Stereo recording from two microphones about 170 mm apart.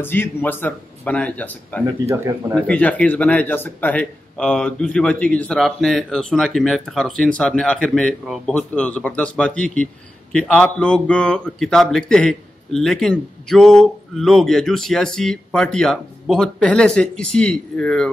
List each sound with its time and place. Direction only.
0.0 s speech: 10° left (ahead or behind)
2.0 s speech: 15° right (ahead or behind)
2.6 s a man's voice: 5° left (ahead or behind)